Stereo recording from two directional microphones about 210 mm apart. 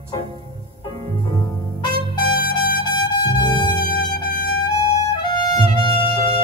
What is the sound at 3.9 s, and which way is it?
Music, 45° left (ahead or behind).